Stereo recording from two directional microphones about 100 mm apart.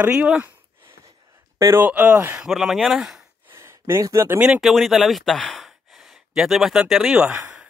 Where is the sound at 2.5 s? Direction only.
Centre (ahead or behind).